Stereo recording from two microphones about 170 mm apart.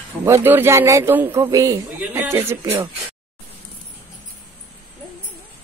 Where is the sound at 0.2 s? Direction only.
15° right (ahead or behind).